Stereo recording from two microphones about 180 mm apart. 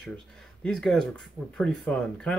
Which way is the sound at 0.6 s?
5° left (ahead or behind).